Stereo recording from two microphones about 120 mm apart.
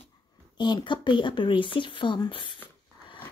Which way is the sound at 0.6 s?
40° left (ahead or behind).